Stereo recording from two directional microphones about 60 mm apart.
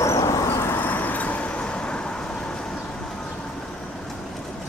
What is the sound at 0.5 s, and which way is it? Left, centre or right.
Vehicle, left.